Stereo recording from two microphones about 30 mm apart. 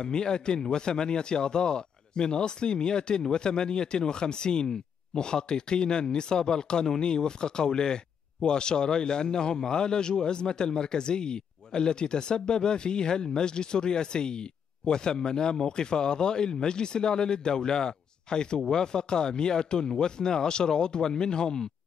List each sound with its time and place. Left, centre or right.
0.0 s speech: left
0.6 s a man's voice: centre
0.8 s speech: left